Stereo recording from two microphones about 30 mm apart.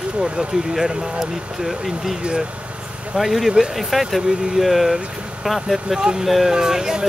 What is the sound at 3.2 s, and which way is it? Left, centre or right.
Speech, centre.